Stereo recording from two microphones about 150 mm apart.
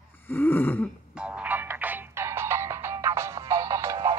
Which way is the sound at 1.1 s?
10° right (ahead or behind).